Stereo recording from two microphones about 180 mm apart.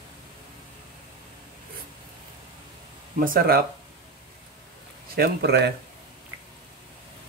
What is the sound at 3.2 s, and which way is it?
Speech, 55° right (ahead or behind).